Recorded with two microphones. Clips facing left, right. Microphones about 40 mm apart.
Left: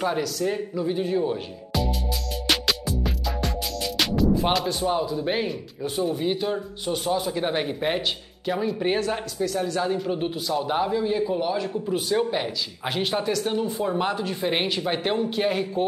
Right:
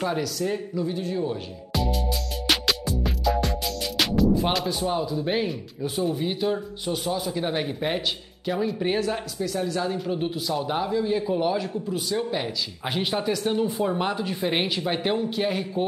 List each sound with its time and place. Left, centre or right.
0.0 s speech: centre
1.7 s music: centre
8.5 s speech: centre
11.7 s speech: centre
12.4 s speech: centre